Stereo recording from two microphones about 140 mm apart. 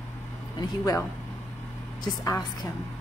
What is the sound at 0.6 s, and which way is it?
Speech, 25° left (ahead or behind).